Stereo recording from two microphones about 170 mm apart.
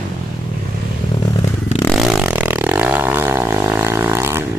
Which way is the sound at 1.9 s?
Centre (ahead or behind).